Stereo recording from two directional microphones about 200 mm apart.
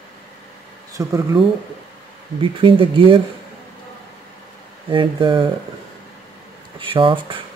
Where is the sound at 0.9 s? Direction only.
15° right (ahead or behind).